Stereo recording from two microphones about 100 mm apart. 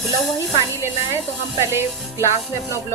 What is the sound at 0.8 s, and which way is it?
A woman's voice, 25° right (ahead or behind).